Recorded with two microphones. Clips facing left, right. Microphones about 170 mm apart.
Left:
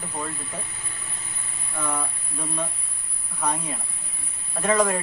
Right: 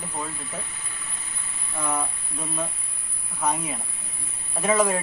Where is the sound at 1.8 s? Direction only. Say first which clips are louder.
Right 1 dB; 10° right (ahead or behind).